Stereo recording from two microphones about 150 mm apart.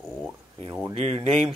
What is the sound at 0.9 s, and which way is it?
Speech, 45° right (ahead or behind).